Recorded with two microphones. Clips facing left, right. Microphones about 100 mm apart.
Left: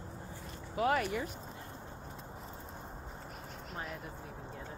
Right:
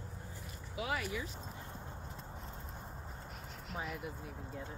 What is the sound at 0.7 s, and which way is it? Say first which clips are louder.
Speech: left 7 dB; 50° left (ahead or behind).